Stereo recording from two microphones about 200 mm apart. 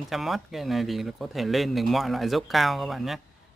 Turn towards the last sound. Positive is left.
turn(degrees=0)  # may be behind; listen again after turning